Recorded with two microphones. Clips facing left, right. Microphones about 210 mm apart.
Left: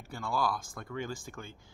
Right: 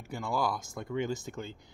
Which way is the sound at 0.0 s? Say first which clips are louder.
Right 1 dB; 20° right (ahead or behind).